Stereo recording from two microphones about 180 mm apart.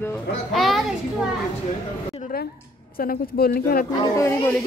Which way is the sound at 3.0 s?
55° left (ahead or behind).